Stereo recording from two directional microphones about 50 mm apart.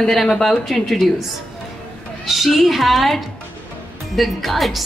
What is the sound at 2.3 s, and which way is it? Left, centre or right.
A woman's voice, centre.